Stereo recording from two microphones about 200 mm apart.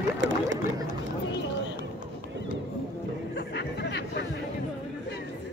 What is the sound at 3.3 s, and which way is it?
Music, 55° left (ahead or behind).